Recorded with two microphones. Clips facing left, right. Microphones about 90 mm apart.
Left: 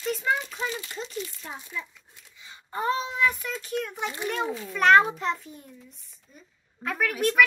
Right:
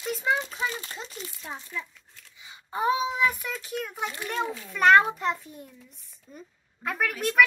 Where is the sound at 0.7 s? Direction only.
35° right (ahead or behind).